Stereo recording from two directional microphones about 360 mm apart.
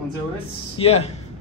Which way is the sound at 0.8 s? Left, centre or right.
Centre.